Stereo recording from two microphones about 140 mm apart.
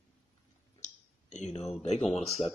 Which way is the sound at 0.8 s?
55° left (ahead or behind).